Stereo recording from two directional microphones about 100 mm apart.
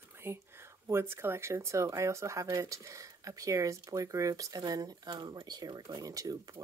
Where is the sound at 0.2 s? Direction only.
25° right (ahead or behind).